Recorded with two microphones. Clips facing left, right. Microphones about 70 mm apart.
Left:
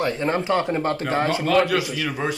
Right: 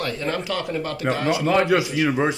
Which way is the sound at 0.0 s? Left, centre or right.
Left.